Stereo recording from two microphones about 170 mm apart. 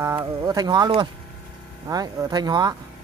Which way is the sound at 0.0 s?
20° right (ahead or behind).